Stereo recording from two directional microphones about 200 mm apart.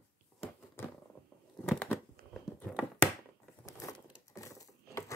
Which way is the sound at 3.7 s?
15° left (ahead or behind).